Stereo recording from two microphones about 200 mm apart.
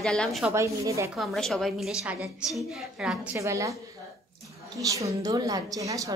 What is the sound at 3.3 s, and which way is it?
Speech, 15° right (ahead or behind).